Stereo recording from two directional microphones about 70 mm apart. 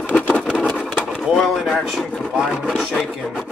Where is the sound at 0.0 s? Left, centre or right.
Left.